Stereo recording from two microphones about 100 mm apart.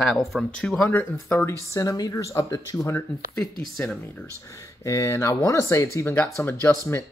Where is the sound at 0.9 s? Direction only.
25° left (ahead or behind).